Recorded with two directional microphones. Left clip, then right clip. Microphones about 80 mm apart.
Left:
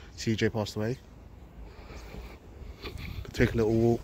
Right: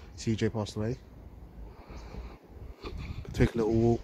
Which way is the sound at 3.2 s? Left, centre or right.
Centre.